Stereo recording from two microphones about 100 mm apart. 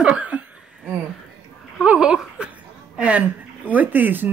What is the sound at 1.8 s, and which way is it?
Speech, 10° right (ahead or behind).